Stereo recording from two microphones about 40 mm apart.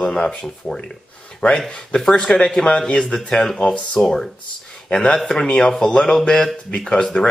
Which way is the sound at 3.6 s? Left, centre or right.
Left.